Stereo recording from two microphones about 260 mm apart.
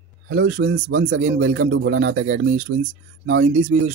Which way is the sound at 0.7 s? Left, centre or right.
Right.